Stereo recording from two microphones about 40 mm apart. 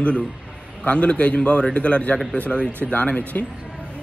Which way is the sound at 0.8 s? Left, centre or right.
Left.